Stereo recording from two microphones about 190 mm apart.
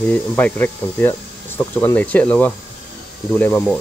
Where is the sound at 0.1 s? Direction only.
10° left (ahead or behind).